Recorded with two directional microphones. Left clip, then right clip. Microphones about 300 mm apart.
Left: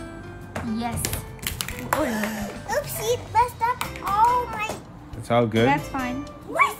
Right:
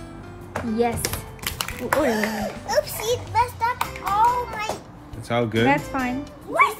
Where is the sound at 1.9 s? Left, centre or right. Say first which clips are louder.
Right 4 dB; centre.